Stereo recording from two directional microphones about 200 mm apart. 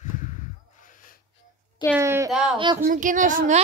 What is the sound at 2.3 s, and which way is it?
Speech, centre (ahead or behind).